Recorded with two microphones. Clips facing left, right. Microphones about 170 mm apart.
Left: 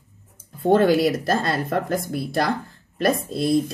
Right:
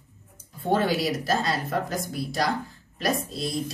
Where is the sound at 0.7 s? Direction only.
50° left (ahead or behind).